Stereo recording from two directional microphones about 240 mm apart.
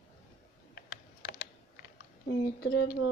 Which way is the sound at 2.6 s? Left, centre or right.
Left.